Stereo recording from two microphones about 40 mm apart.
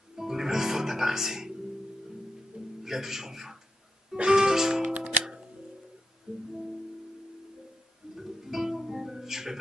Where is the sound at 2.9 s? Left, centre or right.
Centre.